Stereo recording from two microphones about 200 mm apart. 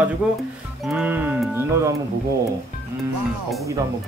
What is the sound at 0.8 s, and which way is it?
Speech, 5° right (ahead or behind).